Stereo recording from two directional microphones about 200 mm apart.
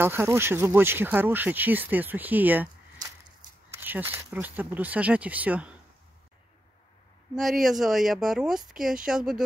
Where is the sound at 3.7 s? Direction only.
10° right (ahead or behind).